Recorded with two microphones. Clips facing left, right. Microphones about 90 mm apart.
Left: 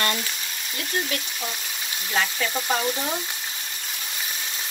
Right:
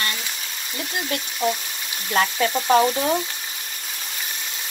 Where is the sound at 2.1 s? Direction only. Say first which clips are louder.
Right 5 dB; 45° right (ahead or behind).